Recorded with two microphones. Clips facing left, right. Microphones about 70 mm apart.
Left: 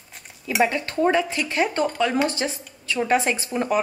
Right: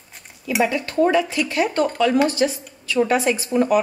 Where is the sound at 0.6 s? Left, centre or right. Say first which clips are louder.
Right 2 dB; left.